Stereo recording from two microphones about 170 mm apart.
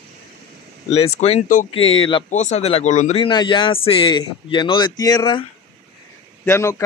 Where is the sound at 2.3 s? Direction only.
45° left (ahead or behind).